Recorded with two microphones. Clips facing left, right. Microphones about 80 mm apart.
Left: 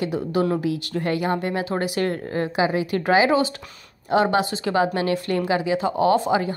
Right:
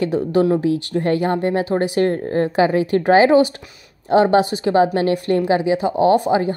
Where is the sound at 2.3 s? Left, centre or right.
Right.